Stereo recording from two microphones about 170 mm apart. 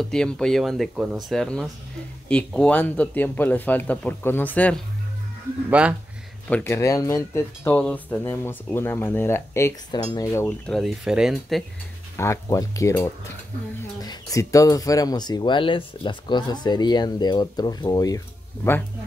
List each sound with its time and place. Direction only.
0.0 s speech: 5° left (ahead or behind)
5.7 s speech: 5° right (ahead or behind)
6.5 s speech: 15° left (ahead or behind)
10.7 s speech: centre (ahead or behind)
12.2 s speech: 20° left (ahead or behind)